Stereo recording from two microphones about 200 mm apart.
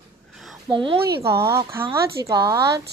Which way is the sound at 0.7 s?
25° right (ahead or behind).